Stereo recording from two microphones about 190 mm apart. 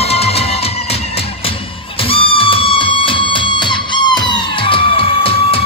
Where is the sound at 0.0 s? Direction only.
30° left (ahead or behind).